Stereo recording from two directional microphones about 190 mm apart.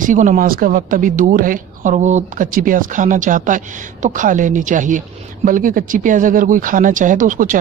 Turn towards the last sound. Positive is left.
turn(degrees=-45)  # may be behind; listen again after turning